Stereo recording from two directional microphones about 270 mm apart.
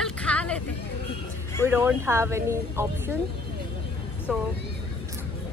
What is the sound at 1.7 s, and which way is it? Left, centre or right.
Speech, centre.